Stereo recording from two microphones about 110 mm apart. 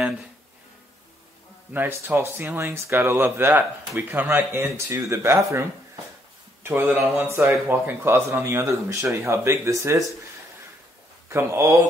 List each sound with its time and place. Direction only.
1.7 s speech: 20° right (ahead or behind)
11.2 s speech: 25° right (ahead or behind)